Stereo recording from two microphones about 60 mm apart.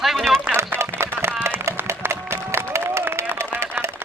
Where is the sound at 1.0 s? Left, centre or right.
Right.